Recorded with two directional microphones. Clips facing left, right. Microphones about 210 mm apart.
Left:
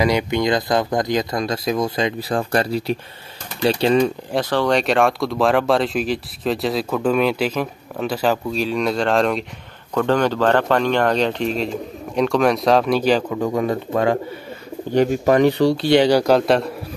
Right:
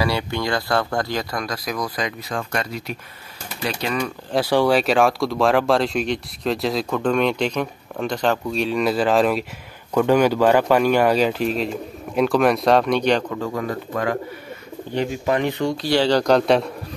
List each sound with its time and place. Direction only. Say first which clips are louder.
0.0 s speech: left 5 dB; 20° left (ahead or behind)
4.3 s speech: right 1 dB; 10° right (ahead or behind)
13.4 s speech: left 5 dB; 20° left (ahead or behind)
15.0 s speech: left 6 dB; 45° left (ahead or behind)
15.9 s speech: left 1 dB; 15° left (ahead or behind)